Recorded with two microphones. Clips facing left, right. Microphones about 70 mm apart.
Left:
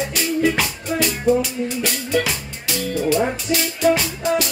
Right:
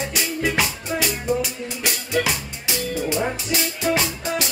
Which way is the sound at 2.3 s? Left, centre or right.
Centre.